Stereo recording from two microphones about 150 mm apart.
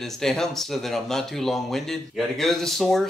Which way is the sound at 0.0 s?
Centre (ahead or behind).